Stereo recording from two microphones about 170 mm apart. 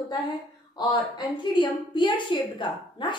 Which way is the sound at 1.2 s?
30° left (ahead or behind).